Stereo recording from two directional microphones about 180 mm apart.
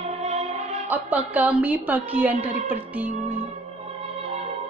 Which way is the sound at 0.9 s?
10° right (ahead or behind).